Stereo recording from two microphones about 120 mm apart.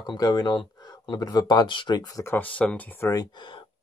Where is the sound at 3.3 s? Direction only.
40° left (ahead or behind).